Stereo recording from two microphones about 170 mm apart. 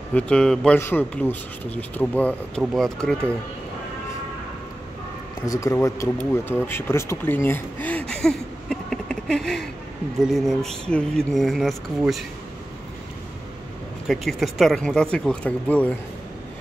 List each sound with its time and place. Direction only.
0.1 s speech: 5° left (ahead or behind)
5.5 s speech: 20° left (ahead or behind); by 12.2 s centre (ahead or behind)
14.0 s speech: centre (ahead or behind)